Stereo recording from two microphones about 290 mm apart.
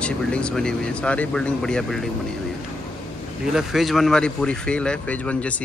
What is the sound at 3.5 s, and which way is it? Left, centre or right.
Speech, centre.